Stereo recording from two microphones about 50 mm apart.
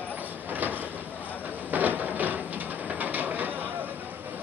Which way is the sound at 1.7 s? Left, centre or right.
Right.